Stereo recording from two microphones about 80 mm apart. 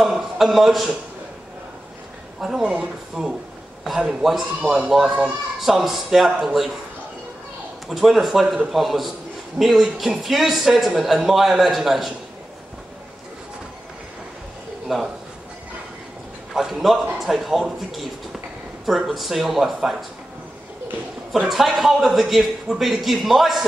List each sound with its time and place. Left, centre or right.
0.0 s a man's voice: centre
2.4 s speech: centre
7.9 s speech: centre
14.9 s speech: centre
16.5 s speech: centre
21.3 s speech: centre